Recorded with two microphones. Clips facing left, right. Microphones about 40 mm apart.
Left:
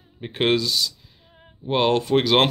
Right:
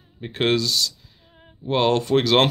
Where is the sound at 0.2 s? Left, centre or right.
Centre.